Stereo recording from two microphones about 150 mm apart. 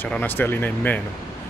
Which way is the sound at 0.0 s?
10° left (ahead or behind).